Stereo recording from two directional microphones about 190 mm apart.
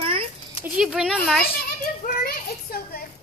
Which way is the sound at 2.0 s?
50° left (ahead or behind).